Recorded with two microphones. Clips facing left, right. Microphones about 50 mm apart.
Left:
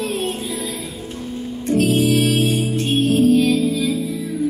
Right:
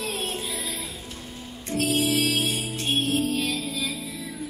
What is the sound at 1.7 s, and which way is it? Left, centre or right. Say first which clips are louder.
Music: left 8 dB; left.